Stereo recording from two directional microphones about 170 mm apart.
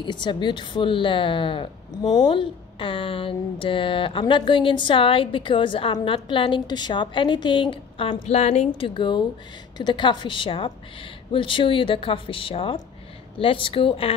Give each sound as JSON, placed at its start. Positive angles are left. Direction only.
{"t": 0.0, "sound": "a woman's voice", "side_deg": 25}